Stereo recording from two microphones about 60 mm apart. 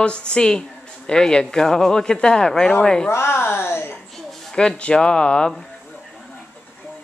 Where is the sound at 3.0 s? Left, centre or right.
Left.